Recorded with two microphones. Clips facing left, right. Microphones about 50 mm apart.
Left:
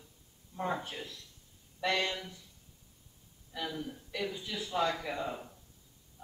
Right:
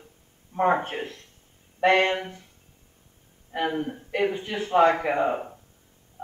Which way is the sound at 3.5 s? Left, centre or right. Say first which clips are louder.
Right 12 dB; right.